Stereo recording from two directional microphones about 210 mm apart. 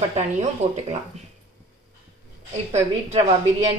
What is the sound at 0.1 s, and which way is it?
Speech, 30° right (ahead or behind).